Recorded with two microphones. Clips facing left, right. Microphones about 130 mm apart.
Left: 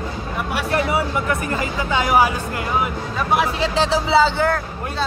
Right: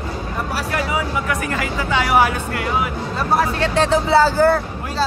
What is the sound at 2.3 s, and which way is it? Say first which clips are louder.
Speech: right 2 dB; 20° left (ahead or behind).